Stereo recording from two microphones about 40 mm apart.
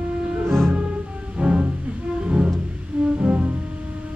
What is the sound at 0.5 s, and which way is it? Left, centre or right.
Music, centre.